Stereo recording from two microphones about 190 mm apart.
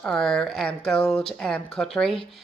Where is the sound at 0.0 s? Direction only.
5° left (ahead or behind).